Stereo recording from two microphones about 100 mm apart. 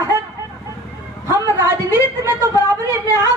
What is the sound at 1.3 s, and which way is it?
A woman's voice, 30° right (ahead or behind).